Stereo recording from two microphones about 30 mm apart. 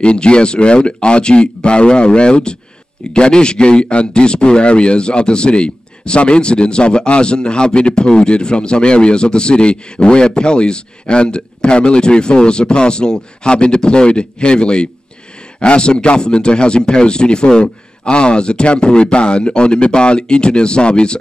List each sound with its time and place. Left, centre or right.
0.0 s speech: left